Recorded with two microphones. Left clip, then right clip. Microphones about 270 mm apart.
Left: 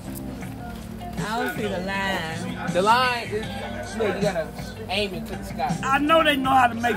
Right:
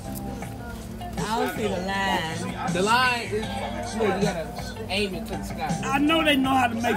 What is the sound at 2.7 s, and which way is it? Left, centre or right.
Speech, left.